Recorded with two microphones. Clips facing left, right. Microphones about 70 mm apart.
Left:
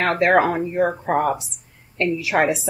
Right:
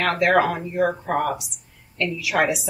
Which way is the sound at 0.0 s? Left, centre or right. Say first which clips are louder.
Left 2 dB; left.